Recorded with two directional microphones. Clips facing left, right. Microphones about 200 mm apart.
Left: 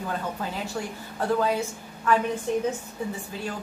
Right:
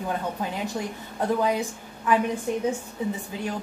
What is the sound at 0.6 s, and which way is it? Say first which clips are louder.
A woman's voice: right 2 dB; 20° right (ahead or behind).